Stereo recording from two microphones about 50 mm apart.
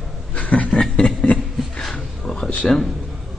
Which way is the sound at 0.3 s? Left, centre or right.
Left.